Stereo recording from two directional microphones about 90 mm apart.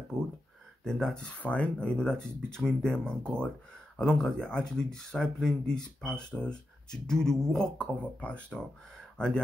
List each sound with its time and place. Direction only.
0.1 s speech: 5° left (ahead or behind)